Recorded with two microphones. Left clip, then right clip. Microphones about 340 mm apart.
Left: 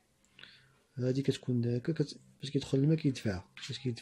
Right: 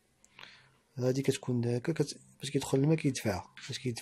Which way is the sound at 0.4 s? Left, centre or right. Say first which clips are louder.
Right 3 dB; centre.